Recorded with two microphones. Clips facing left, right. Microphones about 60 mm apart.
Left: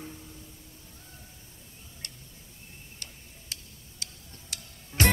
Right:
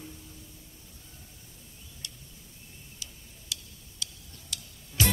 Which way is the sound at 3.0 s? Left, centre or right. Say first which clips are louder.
Even; left.